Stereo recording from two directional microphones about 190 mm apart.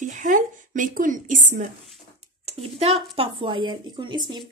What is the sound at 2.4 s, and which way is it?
A woman's voice, 30° right (ahead or behind).